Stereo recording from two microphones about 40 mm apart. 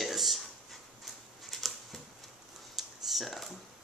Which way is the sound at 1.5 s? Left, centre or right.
Centre.